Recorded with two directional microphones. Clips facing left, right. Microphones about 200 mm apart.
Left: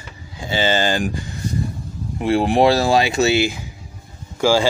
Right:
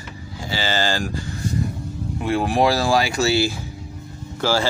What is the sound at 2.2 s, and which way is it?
Speech, 25° left (ahead or behind).